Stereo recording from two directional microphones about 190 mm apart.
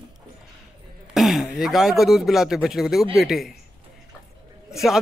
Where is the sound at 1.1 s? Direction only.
Centre (ahead or behind).